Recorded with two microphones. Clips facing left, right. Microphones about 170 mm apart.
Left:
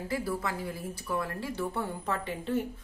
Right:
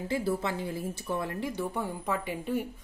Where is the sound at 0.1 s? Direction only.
25° right (ahead or behind).